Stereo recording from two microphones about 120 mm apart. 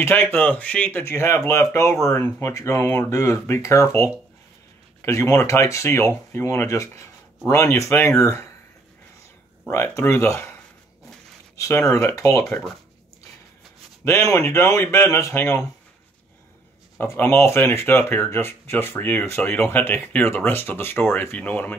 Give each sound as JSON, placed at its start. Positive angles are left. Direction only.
{"t": 0.0, "sound": "speech", "side_deg": 15}
{"t": 9.7, "sound": "speech", "side_deg": 20}
{"t": 11.5, "sound": "speech", "side_deg": 25}
{"t": 12.4, "sound": "speech", "side_deg": 5}
{"t": 14.3, "sound": "speech", "side_deg": 20}
{"t": 17.0, "sound": "speech", "side_deg": 20}